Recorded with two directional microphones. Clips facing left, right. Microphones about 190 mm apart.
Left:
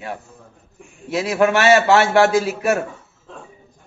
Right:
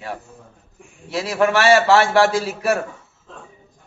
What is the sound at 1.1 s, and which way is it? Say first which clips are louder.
A man's voice: left 1 dB; 20° left (ahead or behind).